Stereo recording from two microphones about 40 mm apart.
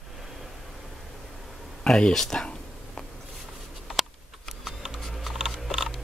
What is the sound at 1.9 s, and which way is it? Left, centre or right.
Speech, centre.